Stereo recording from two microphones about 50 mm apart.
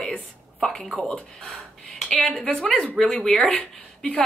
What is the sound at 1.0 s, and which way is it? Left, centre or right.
Speech, centre.